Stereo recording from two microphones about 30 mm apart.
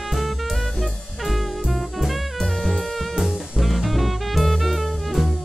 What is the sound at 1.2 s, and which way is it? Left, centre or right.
Music, centre.